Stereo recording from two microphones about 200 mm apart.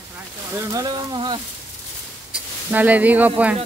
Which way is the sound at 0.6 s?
15° right (ahead or behind).